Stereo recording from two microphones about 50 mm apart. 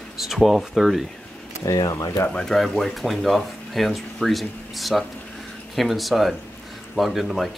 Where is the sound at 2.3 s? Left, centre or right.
Centre.